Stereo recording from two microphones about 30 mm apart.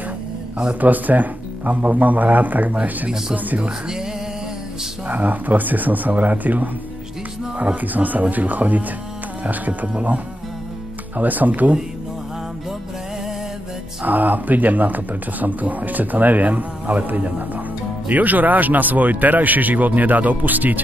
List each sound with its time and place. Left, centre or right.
0.7 s speech: right
2.7 s speech: right
5.0 s speech: right
14.0 s speech: right